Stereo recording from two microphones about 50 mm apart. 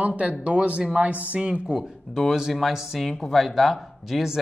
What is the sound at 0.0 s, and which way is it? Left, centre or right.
Speech, right.